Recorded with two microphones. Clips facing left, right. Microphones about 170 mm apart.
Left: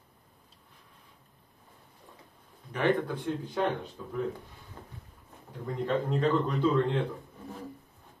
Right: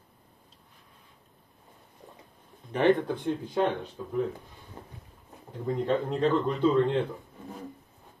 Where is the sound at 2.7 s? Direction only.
25° right (ahead or behind).